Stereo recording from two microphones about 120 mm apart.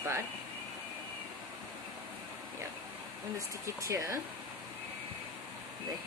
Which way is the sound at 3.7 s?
30° right (ahead or behind).